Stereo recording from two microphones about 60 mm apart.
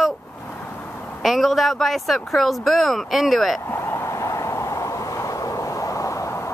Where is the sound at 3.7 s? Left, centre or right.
Left.